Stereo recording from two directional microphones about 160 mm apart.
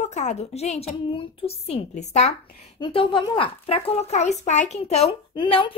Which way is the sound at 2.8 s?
30° left (ahead or behind).